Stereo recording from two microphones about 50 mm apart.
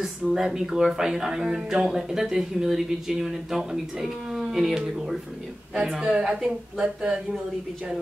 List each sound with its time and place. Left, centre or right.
0.0 s speech: centre